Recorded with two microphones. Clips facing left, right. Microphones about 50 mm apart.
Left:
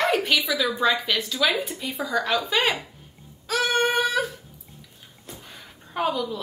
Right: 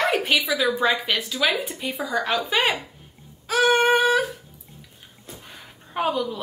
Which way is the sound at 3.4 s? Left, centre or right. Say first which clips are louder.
Right 4 dB; centre.